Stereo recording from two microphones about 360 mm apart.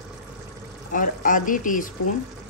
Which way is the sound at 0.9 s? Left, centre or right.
Left.